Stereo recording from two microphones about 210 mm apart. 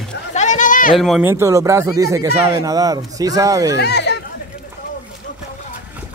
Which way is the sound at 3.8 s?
55° left (ahead or behind).